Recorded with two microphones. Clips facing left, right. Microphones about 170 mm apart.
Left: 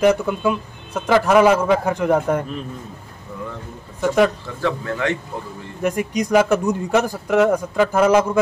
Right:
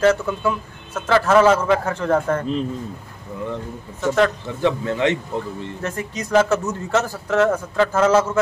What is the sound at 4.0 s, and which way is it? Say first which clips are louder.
Speech: left 2 dB; 10° left (ahead or behind).